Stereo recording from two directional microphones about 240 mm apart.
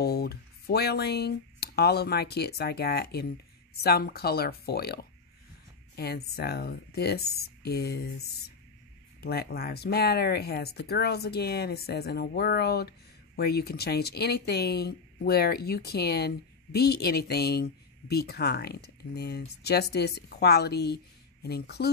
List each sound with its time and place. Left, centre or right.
0.0 s speech: left
9.2 s speech: left